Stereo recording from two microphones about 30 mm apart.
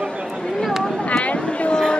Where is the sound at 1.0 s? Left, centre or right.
Left.